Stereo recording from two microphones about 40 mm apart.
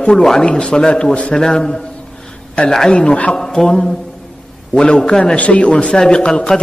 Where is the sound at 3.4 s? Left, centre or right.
Centre.